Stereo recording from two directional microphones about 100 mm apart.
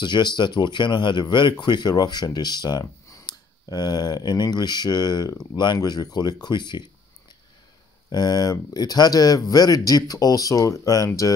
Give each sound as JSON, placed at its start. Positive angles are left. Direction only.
{"t": 0.0, "sound": "speech", "side_deg": 45}
{"t": 8.1, "sound": "speech", "side_deg": 45}